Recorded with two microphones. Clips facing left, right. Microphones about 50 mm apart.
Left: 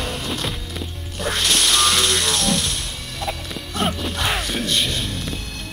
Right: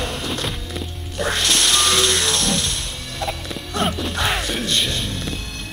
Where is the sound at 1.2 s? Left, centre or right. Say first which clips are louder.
Right 2 dB; right.